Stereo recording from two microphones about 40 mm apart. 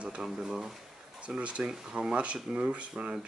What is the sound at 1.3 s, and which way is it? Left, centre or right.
Speech, right.